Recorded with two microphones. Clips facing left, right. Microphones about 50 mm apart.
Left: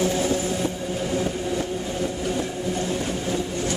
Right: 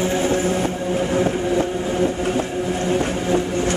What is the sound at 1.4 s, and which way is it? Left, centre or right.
Vehicle, right.